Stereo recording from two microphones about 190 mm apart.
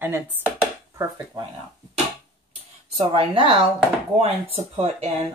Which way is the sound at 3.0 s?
30° right (ahead or behind).